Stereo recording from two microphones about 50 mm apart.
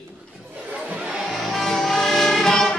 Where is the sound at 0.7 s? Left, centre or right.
Right.